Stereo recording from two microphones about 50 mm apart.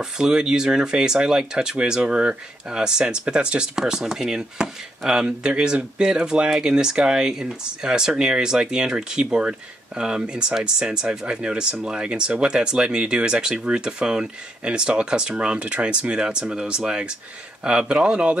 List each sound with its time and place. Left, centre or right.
0.0 s speech: centre